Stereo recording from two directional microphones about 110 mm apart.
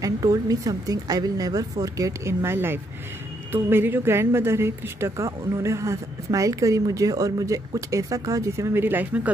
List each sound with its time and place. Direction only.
0.0 s a woman's voice: 35° right (ahead or behind); by 9.3 s 15° right (ahead or behind)